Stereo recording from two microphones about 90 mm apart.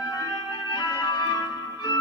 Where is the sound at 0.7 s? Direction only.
50° left (ahead or behind).